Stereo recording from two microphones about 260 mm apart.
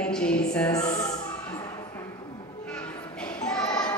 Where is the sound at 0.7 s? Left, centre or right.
Centre.